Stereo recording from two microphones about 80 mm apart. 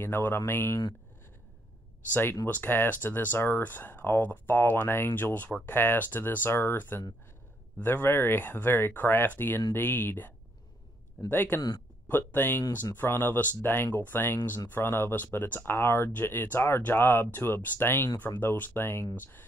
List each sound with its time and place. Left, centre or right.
0.0 s speech: left
2.4 s speech: left